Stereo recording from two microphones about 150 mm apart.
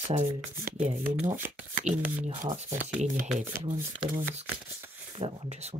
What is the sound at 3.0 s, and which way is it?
Speech, 60° right (ahead or behind).